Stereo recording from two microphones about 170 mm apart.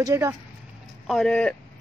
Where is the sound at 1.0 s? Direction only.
Centre (ahead or behind).